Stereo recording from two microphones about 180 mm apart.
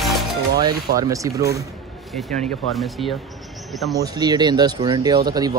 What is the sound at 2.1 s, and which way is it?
Speech, centre (ahead or behind).